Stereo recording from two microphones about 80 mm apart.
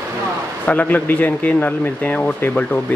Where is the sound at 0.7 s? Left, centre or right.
Centre.